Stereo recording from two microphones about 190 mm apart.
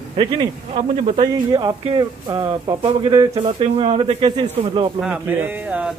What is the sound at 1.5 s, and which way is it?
Speech, 20° right (ahead or behind).